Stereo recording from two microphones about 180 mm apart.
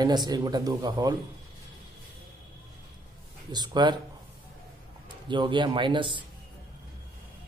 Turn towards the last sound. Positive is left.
turn(degrees=-25)  # may be behind; listen again after turning